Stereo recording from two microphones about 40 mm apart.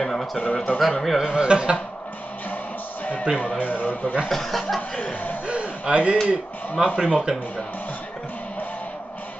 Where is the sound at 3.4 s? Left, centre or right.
Left.